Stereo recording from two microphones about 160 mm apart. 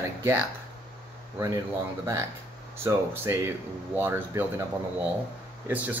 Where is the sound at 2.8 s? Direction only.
15° right (ahead or behind).